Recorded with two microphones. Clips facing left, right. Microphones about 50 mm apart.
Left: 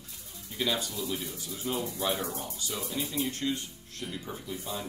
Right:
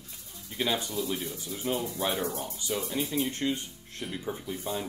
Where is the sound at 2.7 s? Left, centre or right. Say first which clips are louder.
Right 4 dB; centre.